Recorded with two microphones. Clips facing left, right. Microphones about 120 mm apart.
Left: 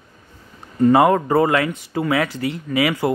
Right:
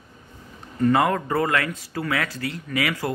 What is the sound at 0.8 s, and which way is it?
Speech, 25° left (ahead or behind).